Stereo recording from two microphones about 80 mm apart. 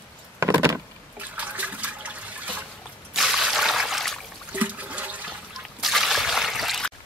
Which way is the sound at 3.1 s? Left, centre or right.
Centre.